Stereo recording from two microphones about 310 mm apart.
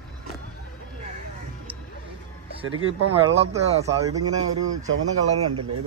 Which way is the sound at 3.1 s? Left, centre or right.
Centre.